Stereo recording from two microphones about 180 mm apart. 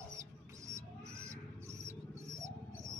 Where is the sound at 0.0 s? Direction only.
15° right (ahead or behind).